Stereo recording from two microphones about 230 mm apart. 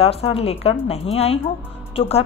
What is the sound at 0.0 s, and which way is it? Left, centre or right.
Speech, left.